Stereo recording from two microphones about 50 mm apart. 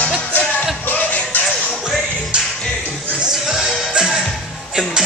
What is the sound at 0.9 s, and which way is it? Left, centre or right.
Music, left.